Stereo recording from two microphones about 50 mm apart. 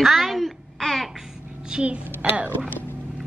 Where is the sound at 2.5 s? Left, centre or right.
Left.